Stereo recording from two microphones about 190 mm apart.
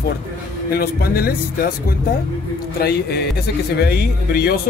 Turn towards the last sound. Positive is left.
turn(degrees=55)  # may be behind; listen again after turning